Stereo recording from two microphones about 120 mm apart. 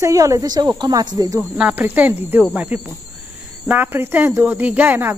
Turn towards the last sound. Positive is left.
turn(degrees=-15)  # may be behind; listen again after turning